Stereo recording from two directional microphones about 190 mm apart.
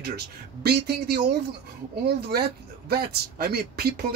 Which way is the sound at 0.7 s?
55° right (ahead or behind).